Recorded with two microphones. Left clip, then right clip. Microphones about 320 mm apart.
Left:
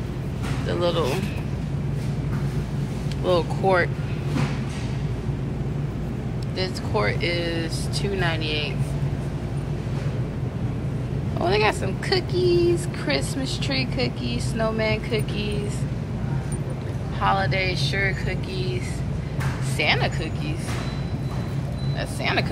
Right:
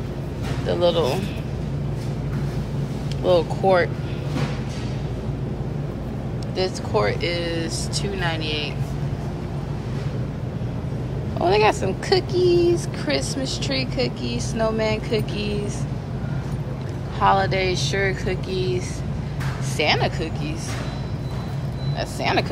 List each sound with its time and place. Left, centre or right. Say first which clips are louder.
0.7 s a woman's voice: right 4 dB; centre
3.3 s speech: right 3 dB; centre
6.6 s a woman's voice: right 3 dB; centre
11.3 s a woman's voice: right 3 dB; centre
17.2 s a woman's voice: right 4 dB; centre
19.8 s a woman's voice: right 2 dB; centre
22.2 s a woman's voice: right 2 dB; centre